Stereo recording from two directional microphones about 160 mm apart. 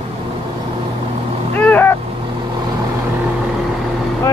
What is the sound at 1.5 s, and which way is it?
Vehicle, 10° left (ahead or behind).